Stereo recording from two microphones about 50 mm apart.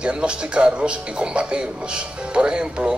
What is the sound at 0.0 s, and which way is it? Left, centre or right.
Speech, right.